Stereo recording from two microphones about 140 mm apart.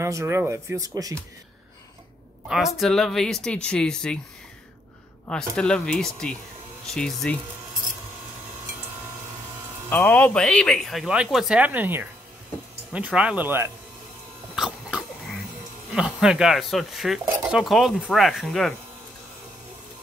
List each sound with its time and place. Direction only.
0.0 s speech: 20° right (ahead or behind)
2.4 s speech: centre (ahead or behind)
5.3 s speech: 5° left (ahead or behind)
9.8 s speech: 15° left (ahead or behind); by 13.7 s 15° right (ahead or behind)
14.5 s cough: 5° right (ahead or behind)
15.9 s speech: 5° right (ahead or behind)